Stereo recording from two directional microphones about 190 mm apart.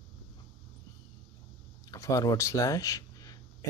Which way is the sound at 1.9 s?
15° left (ahead or behind).